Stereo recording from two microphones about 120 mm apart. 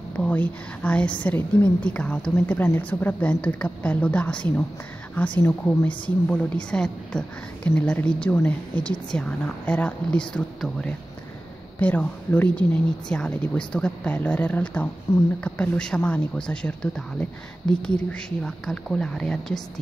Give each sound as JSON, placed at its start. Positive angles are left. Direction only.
{"t": 0.2, "sound": "a woman's voice", "side_deg": 10}
{"t": 15.1, "sound": "speech", "side_deg": 25}
{"t": 15.4, "sound": "a woman's voice", "side_deg": 10}